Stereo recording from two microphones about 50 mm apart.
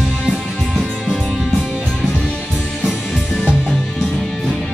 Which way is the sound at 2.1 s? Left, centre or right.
Left.